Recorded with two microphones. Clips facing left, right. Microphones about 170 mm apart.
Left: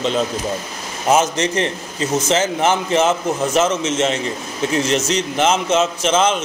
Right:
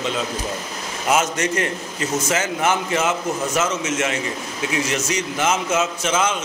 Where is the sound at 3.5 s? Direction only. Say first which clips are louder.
Left 6 dB; 25° left (ahead or behind).